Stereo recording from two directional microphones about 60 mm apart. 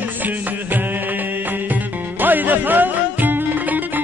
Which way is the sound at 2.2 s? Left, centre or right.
Right.